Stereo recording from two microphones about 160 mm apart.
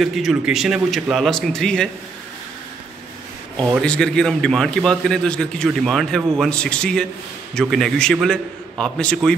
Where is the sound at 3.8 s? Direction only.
5° left (ahead or behind).